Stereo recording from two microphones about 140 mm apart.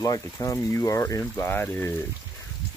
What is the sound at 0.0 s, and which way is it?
Speech, 25° left (ahead or behind).